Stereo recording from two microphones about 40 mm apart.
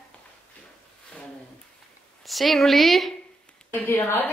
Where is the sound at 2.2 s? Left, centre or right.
Centre.